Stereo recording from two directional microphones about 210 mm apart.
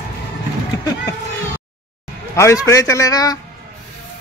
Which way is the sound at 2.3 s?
15° left (ahead or behind).